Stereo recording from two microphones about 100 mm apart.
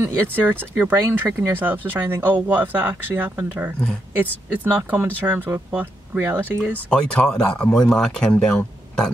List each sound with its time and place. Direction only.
0.0 s speech: 20° right (ahead or behind)
6.9 s speech: 10° left (ahead or behind)